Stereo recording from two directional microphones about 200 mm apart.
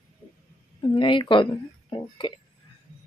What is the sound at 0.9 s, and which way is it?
A woman's voice, 25° left (ahead or behind).